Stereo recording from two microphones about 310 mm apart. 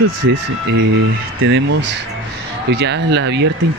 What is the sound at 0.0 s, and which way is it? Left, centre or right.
Speech, right.